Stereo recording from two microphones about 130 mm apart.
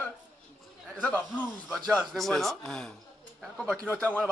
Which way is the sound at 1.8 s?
5° left (ahead or behind).